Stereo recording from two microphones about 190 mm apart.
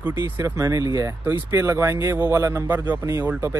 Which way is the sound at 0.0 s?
15° right (ahead or behind).